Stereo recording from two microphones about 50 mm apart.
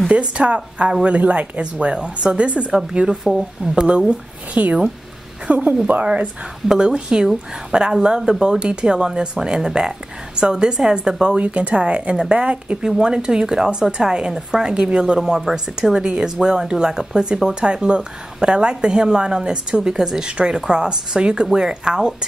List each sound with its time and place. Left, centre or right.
0.1 s speech: right
4.6 s speech: right
6.7 s speech: centre
11.4 s speech: right
15.1 s speech: centre